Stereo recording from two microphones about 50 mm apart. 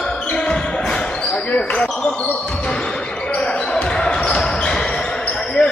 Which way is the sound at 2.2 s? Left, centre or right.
Left.